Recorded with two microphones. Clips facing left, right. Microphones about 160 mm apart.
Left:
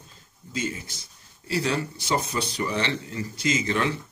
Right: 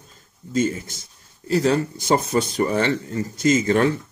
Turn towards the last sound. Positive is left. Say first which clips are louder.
# right 7 dB
turn(degrees=-45)  # may be behind; listen again after turning